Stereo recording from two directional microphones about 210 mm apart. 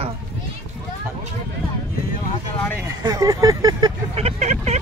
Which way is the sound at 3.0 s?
15° right (ahead or behind).